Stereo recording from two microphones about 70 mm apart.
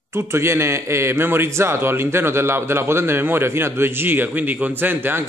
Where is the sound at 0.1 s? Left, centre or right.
Right.